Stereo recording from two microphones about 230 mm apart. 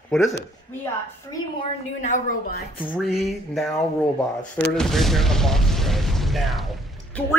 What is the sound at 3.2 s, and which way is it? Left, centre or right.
A woman's voice, centre.